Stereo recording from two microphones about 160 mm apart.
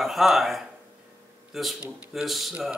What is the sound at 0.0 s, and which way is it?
Speech, centre (ahead or behind).